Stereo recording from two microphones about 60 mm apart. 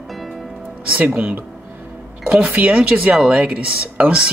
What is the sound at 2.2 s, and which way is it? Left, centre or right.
Speech, centre.